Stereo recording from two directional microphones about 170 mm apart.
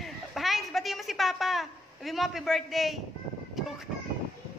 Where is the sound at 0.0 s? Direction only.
Centre (ahead or behind).